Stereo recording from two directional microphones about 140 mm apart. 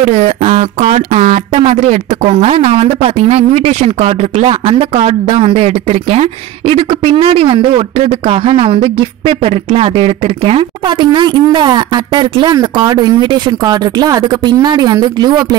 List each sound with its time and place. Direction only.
0.1 s speech: 55° right (ahead or behind); by 15.4 s 30° right (ahead or behind)